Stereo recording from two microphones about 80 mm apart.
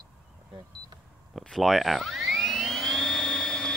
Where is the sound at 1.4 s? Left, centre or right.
Centre.